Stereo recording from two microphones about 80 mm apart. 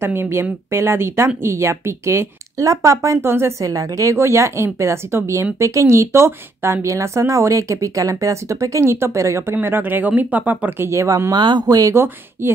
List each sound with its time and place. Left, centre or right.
0.0 s speech: right
9.6 s speech: right
10.9 s speech: right
11.3 s speech: right
11.9 s speech: right